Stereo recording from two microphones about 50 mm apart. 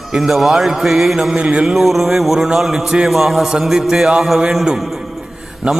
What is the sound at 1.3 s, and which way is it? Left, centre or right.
Speech, right.